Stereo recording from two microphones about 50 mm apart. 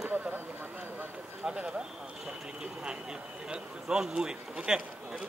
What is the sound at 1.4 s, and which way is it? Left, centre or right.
Speech, centre.